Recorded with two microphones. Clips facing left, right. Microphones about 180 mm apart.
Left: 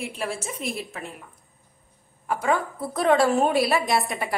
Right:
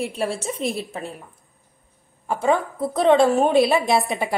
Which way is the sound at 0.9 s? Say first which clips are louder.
Right 5 dB; 35° right (ahead or behind).